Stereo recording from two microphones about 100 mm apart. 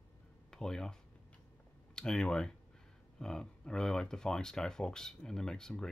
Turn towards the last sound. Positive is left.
turn(degrees=5)  # may be behind; listen again after turning